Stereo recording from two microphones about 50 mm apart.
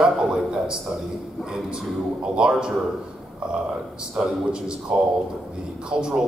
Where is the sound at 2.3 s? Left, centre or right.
Centre.